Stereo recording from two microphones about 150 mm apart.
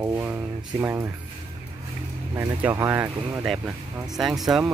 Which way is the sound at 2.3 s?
20° right (ahead or behind).